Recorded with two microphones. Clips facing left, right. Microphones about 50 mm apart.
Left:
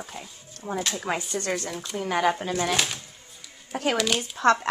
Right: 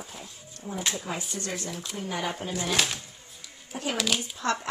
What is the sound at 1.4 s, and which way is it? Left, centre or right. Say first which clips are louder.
Speech: left 5 dB; left.